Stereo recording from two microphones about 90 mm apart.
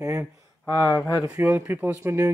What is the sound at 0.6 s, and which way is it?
Speech, 35° left (ahead or behind).